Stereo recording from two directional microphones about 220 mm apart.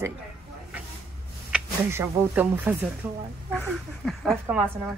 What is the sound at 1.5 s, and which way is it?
Speech, 10° right (ahead or behind).